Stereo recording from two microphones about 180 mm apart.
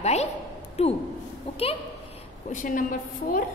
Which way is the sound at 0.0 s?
35° left (ahead or behind).